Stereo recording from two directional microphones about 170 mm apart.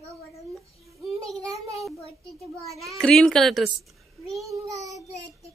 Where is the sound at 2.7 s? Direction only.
Centre (ahead or behind).